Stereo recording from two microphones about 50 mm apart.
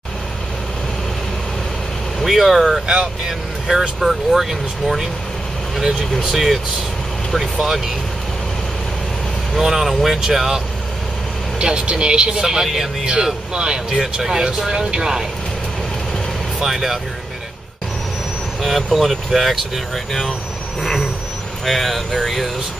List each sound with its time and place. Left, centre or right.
2.1 s speech: centre
2.9 s speech: centre
9.5 s speech: centre
11.6 s speech: centre
16.5 s speech: centre
18.6 s speech: centre
21.6 s speech: centre